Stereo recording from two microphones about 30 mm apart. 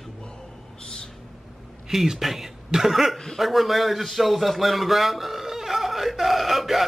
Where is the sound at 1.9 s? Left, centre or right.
Centre.